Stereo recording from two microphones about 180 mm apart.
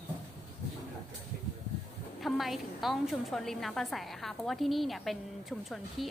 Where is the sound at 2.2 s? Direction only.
Centre (ahead or behind).